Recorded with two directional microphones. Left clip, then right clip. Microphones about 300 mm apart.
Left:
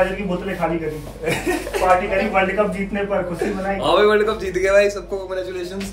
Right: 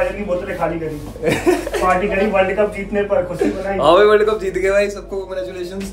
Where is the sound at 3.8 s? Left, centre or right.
Centre.